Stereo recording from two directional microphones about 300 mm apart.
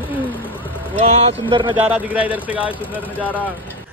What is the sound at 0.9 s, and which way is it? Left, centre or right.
Speech, right.